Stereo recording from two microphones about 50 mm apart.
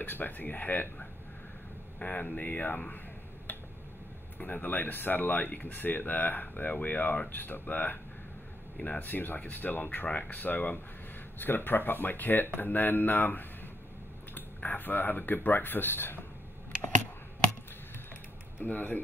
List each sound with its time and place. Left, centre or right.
0.0 s speech: left
4.4 s speech: left
10.0 s speech: left
10.3 s speech: left
18.6 s speech: left